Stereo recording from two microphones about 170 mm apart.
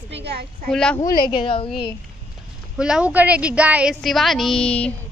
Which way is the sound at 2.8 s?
5° right (ahead or behind).